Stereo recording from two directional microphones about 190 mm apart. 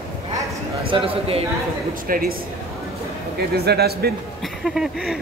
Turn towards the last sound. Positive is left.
turn(degrees=-5)  # may be behind; listen again after turning